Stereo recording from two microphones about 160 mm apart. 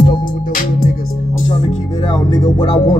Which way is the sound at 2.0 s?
30° left (ahead or behind).